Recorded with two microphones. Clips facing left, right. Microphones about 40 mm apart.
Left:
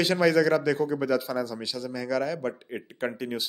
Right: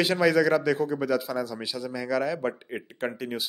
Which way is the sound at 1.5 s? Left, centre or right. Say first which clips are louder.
Right 1 dB; centre.